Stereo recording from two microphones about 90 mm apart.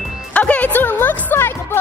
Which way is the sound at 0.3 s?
15° left (ahead or behind).